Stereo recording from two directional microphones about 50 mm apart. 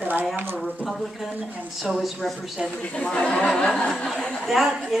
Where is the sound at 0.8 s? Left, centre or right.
Centre.